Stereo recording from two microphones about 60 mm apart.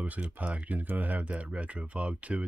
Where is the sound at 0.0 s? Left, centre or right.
Right.